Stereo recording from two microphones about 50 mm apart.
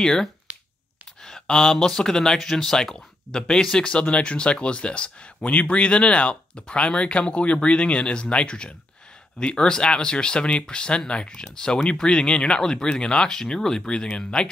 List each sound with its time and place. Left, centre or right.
0.0 s speech: centre
0.5 s finger snapping: right
1.2 s speech: centre